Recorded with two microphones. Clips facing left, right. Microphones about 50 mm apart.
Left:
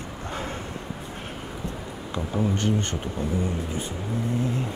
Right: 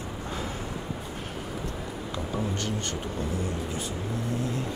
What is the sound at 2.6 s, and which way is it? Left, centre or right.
Speech, left.